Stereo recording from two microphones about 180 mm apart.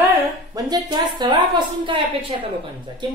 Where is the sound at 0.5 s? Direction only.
20° right (ahead or behind).